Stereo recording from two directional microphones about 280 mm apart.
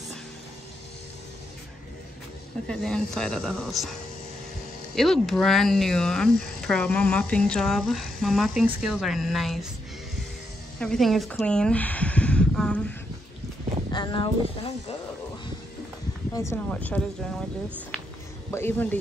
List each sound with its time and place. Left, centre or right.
2.7 s speech: centre
4.9 s speech: centre
10.8 s speech: centre
13.9 s speech: centre
16.3 s speech: centre
18.5 s speech: centre